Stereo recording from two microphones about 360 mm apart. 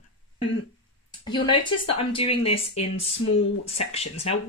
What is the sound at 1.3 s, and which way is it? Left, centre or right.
Speech, centre.